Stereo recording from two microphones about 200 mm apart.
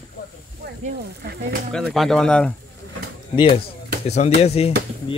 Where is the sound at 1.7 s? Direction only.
Centre (ahead or behind).